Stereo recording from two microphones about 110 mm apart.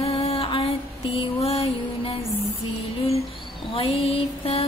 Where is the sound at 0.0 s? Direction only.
60° left (ahead or behind).